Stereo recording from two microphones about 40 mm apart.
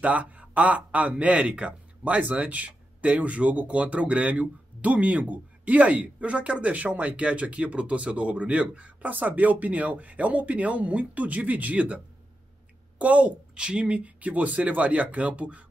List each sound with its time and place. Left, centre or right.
0.0 s speech: right
13.0 s speech: right
13.9 s speech: right